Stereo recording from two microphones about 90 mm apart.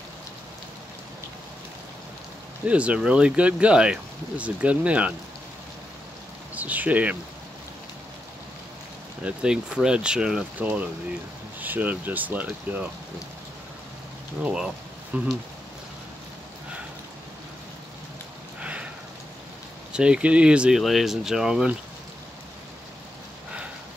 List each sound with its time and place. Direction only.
2.6 s speech: 15° right (ahead or behind)
6.5 s speech: 20° right (ahead or behind)
9.2 s speech: 10° right (ahead or behind)
11.6 s speech: 20° right (ahead or behind)
14.4 s speech: 10° right (ahead or behind)
15.1 s speech: 20° right (ahead or behind)
18.6 s rain: 15° right (ahead or behind)
19.9 s speech: 10° right (ahead or behind)